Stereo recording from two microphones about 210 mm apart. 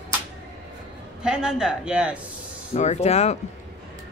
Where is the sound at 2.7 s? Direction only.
30° left (ahead or behind).